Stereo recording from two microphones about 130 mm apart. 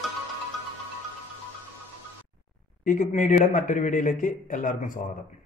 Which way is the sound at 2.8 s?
90° left.